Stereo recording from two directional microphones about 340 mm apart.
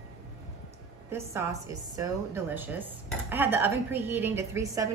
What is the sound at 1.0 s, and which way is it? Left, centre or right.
Speech, centre.